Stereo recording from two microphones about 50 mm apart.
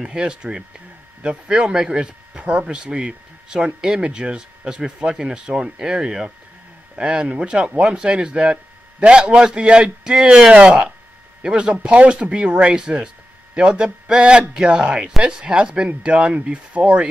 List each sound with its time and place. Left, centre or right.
0.0 s speech: centre